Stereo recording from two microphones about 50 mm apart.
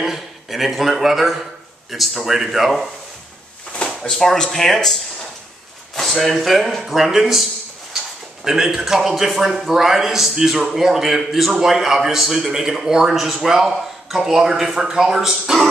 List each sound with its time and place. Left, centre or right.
0.0 s speech: centre
3.7 s drawer open or close: left
4.1 s speech: centre
8.5 s a man's voice: centre